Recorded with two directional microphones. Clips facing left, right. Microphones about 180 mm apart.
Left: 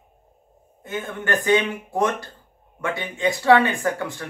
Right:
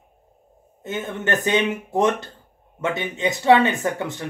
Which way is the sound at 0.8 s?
20° right (ahead or behind).